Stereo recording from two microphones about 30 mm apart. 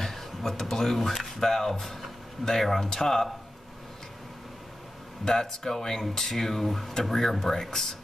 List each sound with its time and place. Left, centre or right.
0.0 s speech: centre
5.2 s speech: centre